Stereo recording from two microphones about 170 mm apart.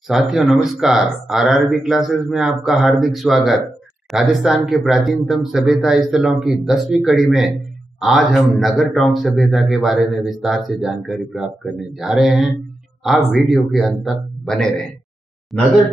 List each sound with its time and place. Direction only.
0.1 s a man's voice: centre (ahead or behind)